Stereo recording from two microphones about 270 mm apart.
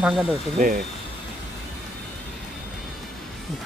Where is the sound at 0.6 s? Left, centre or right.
Right.